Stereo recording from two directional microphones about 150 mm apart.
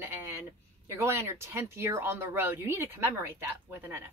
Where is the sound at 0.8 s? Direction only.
20° right (ahead or behind).